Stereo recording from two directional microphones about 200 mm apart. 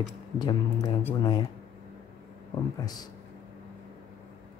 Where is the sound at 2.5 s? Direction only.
20° left (ahead or behind).